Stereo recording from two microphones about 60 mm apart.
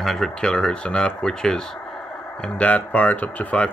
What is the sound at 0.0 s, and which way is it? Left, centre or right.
Speech, centre.